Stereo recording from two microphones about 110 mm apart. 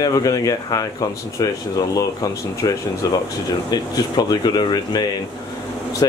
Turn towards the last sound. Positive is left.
turn(degrees=40)  # may be behind; listen again after turning